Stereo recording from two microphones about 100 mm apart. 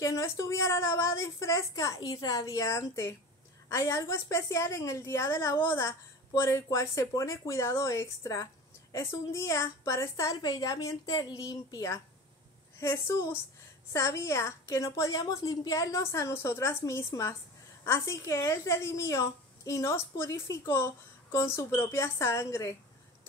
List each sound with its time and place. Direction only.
0.0 s a woman's voice: 30° left (ahead or behind)